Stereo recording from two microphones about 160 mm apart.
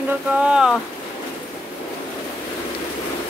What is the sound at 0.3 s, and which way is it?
Speech, 5° right (ahead or behind).